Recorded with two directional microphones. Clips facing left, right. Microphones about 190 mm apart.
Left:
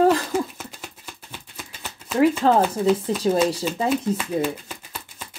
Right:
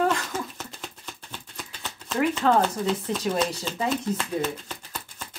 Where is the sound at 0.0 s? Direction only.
35° left (ahead or behind).